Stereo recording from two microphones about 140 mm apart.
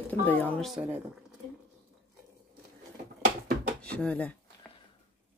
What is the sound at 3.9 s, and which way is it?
Speech, 10° left (ahead or behind).